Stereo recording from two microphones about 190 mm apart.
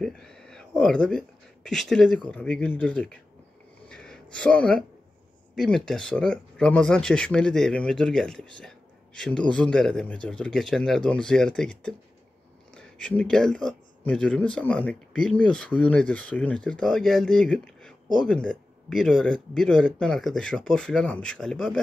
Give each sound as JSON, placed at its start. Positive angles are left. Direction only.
{"t": 0.0, "sound": "speech", "side_deg": 5}
{"t": 3.9, "sound": "a sound", "side_deg": 5}
{"t": 5.6, "sound": "speech", "side_deg": 5}